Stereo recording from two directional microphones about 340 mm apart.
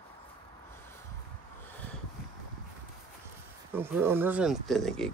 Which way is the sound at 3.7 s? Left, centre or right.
Centre.